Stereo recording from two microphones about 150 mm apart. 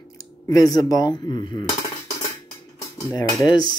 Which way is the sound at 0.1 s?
20° left (ahead or behind).